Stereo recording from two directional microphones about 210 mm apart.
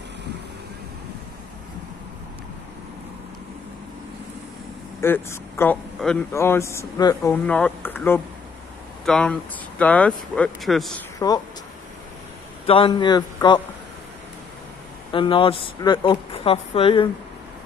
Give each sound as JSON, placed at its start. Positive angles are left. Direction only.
{"t": 5.0, "sound": "speech", "side_deg": 10}
{"t": 11.1, "sound": "speech", "side_deg": 15}
{"t": 12.6, "sound": "speech", "side_deg": 25}
{"t": 15.1, "sound": "speech", "side_deg": 25}